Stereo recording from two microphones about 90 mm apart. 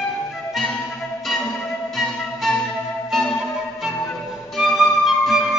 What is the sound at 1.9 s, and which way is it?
Music, centre (ahead or behind).